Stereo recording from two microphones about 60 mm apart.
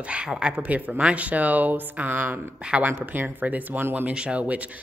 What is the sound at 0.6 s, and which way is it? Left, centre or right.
Speech, right.